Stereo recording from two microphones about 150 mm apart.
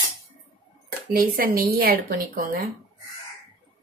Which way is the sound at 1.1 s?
75° right (ahead or behind).